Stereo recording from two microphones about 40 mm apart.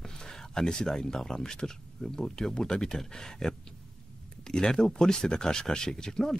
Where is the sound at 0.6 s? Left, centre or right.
Centre.